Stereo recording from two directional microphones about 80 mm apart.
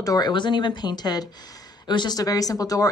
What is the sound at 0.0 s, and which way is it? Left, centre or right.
Speech, left.